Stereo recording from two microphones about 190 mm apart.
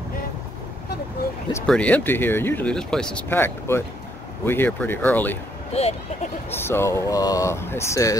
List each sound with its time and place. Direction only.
1.7 s speech: 5° left (ahead or behind)
5.7 s speech: 30° left (ahead or behind)
6.5 s speech: 10° left (ahead or behind)